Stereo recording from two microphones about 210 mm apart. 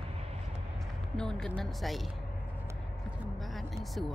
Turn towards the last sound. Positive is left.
turn(degrees=0)  # may be behind; listen again after turning